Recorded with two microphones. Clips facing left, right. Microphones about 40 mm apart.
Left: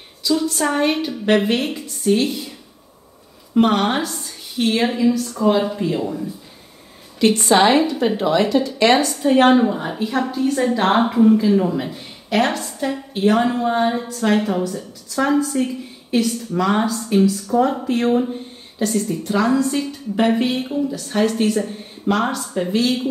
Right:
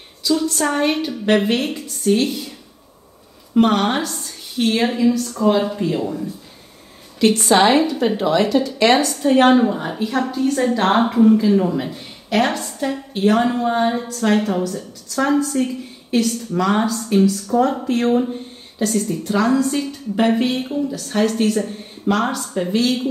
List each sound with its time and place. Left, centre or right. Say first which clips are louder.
0.2 s a woman's voice: even; centre
3.5 s a woman's voice: even; centre
7.3 s a woman's voice: even; centre
9.3 s a woman's voice: even; right
9.8 s a woman's voice: even; centre